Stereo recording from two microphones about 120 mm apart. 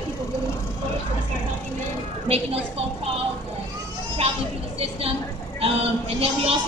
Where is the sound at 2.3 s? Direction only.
55° right (ahead or behind).